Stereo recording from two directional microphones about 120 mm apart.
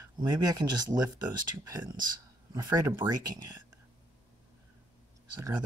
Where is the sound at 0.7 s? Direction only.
35° right (ahead or behind).